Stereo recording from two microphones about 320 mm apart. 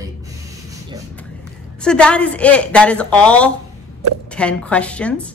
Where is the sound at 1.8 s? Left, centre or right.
Centre.